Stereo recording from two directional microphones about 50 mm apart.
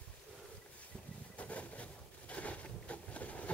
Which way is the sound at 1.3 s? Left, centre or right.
Left.